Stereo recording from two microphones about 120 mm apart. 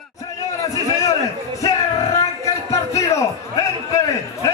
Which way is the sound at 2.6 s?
25° left (ahead or behind).